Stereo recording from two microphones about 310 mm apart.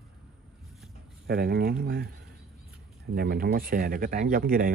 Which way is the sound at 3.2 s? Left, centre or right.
Right.